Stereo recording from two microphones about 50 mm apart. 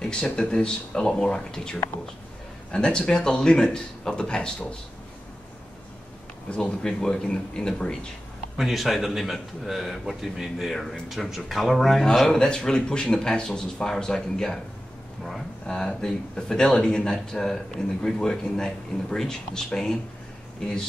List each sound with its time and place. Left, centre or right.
0.1 s speech: centre
6.5 s speech: centre
8.5 s a man's voice: centre
15.6 s speech: centre